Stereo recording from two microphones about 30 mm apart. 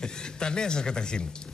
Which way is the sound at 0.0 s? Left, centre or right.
Left.